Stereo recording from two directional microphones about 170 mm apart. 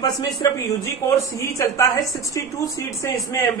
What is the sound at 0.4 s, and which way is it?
A woman's voice, 20° left (ahead or behind).